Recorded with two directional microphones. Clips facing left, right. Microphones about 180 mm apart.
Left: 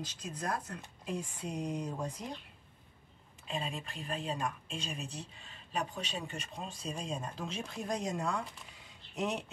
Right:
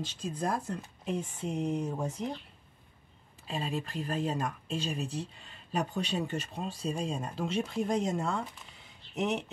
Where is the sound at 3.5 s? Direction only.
35° right (ahead or behind).